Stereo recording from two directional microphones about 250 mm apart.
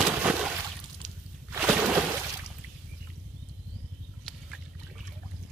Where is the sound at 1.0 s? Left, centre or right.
Right.